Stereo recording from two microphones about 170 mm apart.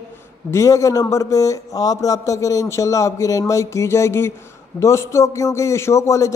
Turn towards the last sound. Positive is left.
turn(degrees=20)  # may be behind; listen again after turning